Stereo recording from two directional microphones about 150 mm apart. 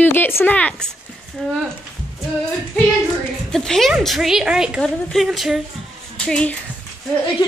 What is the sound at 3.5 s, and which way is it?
A woman's voice, 5° left (ahead or behind).